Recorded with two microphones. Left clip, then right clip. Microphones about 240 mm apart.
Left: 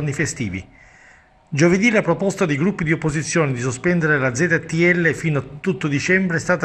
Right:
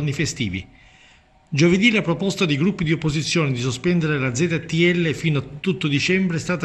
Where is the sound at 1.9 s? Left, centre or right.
Centre.